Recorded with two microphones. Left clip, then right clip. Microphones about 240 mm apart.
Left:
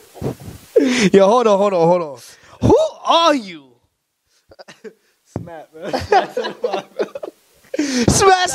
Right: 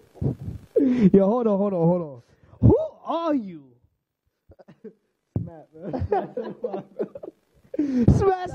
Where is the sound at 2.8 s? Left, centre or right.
Centre.